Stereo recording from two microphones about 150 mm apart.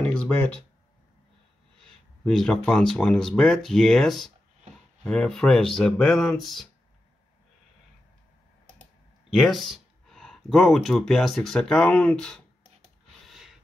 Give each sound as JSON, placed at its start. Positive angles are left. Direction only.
{"t": 0.0, "sound": "a sound", "side_deg": 5}
{"t": 1.8, "sound": "speech", "side_deg": 5}
{"t": 9.3, "sound": "speech", "side_deg": 0}
{"t": 13.3, "sound": "snort", "side_deg": 0}